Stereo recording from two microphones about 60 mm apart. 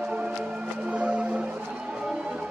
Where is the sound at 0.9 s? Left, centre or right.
Right.